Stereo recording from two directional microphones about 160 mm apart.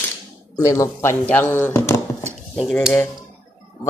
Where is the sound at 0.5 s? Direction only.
20° left (ahead or behind).